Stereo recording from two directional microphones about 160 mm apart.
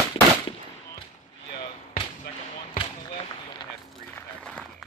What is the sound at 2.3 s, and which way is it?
Basketball bounce, 75° left (ahead or behind).